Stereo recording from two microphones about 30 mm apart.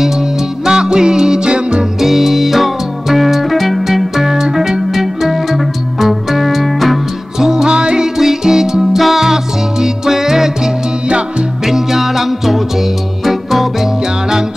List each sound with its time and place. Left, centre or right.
0.0 s music: centre
2.0 s music: centre
4.9 s music: centre
7.3 s music: centre
7.6 s music: right
8.2 s music: centre
8.9 s music: centre
9.2 s music: centre
11.1 s music: right
11.6 s music: centre